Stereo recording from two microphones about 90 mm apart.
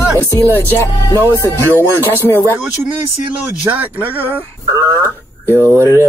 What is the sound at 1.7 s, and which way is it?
Speech, 25° left (ahead or behind).